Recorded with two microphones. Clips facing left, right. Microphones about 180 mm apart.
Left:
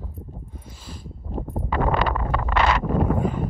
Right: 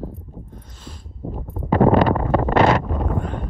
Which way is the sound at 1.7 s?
45° right (ahead or behind).